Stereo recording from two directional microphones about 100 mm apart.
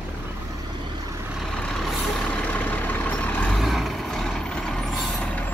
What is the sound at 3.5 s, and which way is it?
Vehicle, centre (ahead or behind).